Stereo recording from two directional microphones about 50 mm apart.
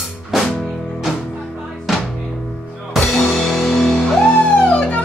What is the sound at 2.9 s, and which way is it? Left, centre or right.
Music, centre.